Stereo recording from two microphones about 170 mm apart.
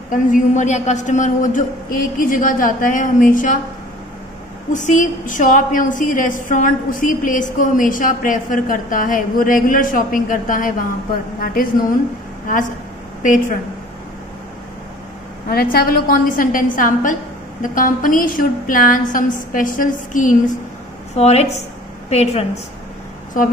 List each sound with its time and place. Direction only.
0.1 s a woman's voice: 45° left (ahead or behind)
4.7 s a woman's voice: 50° left (ahead or behind)
13.2 s a woman's voice: 50° left (ahead or behind)
15.5 s a woman's voice: 60° left (ahead or behind)
21.2 s speech: 40° left (ahead or behind)